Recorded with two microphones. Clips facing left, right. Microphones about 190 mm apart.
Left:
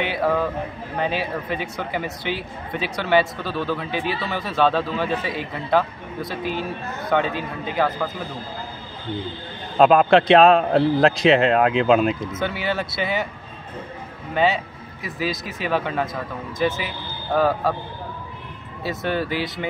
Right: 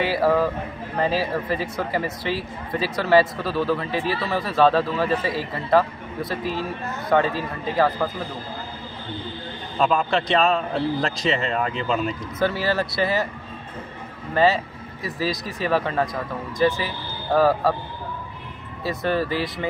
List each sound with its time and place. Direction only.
0.0 s a man's voice: centre (ahead or behind)
9.8 s a man's voice: 70° left (ahead or behind)
12.4 s speech: centre (ahead or behind)
14.3 s speech: centre (ahead or behind)
18.9 s speech: centre (ahead or behind)